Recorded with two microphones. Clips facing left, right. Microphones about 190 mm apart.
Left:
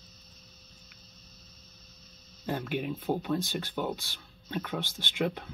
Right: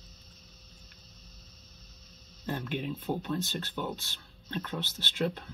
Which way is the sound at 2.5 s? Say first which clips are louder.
Left 2 dB; 10° left (ahead or behind).